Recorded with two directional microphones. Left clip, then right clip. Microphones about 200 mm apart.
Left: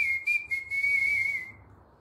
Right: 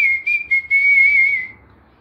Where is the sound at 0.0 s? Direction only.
10° left (ahead or behind).